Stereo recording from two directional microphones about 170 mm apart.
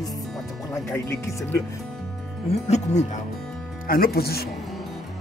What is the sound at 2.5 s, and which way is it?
Speech, 40° left (ahead or behind).